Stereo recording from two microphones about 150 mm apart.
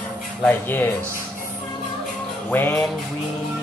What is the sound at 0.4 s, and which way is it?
Speech, 15° left (ahead or behind).